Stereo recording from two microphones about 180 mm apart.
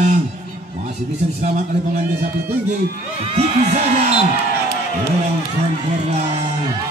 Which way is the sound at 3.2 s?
35° right (ahead or behind).